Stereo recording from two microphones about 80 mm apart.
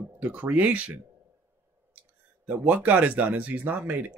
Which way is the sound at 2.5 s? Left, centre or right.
Centre.